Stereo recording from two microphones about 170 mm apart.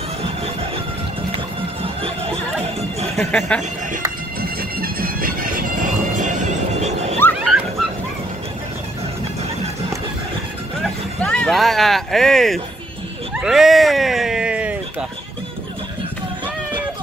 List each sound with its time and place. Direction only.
1.3 s music: 35° right (ahead or behind)
3.2 s speech: 5° left (ahead or behind)
3.9 s bagpipes: 60° right (ahead or behind); by 7.2 s 40° right (ahead or behind)
7.3 s a sound: 5° right (ahead or behind)
10.8 s a sound: 5° left (ahead or behind)
13.3 s speech: 5° right (ahead or behind)